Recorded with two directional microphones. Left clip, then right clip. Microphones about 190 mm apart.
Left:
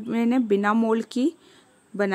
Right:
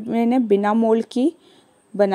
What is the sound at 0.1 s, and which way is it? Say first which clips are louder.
Speech: right 5 dB; 10° right (ahead or behind).